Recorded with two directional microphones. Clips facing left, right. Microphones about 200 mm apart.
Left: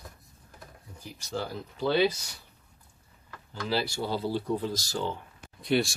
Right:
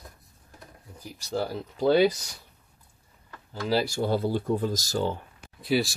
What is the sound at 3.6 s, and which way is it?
Speech, 45° right (ahead or behind).